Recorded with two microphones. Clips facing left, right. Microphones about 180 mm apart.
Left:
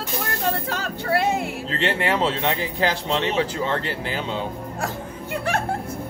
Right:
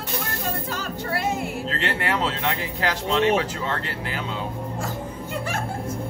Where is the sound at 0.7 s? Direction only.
65° left (ahead or behind).